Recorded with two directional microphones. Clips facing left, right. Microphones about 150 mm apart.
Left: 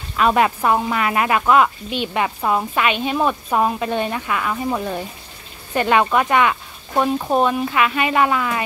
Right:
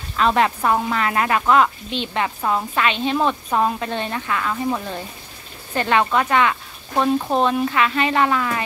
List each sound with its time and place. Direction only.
0.2 s speech: 10° left (ahead or behind)